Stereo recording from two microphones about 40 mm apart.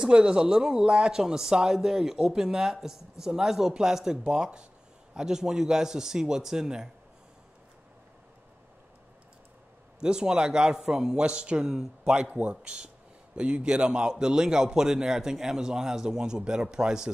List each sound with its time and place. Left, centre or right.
0.0 s speech: right
9.9 s a man's voice: centre
12.3 s a man's voice: right
12.6 s speech: right